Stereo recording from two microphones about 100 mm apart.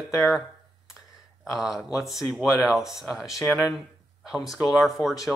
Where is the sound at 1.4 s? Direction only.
5° right (ahead or behind).